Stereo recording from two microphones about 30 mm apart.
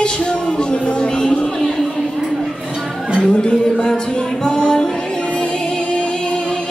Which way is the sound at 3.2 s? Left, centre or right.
Left.